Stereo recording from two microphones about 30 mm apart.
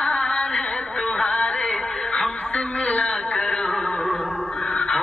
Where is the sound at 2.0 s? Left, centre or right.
Left.